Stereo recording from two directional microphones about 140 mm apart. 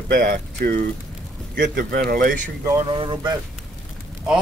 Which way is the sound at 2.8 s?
35° right (ahead or behind).